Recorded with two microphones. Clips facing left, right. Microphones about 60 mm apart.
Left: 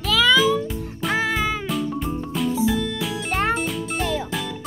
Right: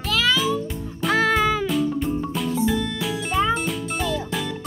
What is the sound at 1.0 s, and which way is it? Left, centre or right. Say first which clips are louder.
Music: right 3 dB; centre.